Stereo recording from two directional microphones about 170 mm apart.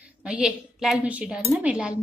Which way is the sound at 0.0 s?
5° right (ahead or behind).